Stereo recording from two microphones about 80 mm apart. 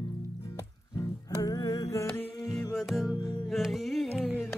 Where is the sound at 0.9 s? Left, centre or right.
Left.